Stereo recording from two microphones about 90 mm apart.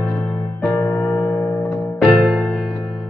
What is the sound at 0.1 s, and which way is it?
Music, 10° left (ahead or behind).